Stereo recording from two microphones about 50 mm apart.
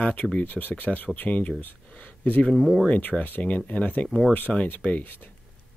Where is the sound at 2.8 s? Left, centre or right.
Left.